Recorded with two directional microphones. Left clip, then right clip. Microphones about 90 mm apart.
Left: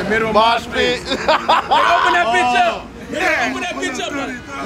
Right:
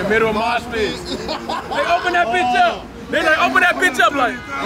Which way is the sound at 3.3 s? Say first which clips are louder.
Right 8 dB; 30° right (ahead or behind).